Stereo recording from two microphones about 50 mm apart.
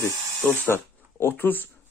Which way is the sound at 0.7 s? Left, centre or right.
Left.